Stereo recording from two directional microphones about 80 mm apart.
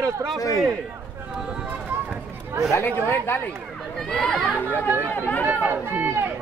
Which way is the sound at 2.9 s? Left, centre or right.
Left.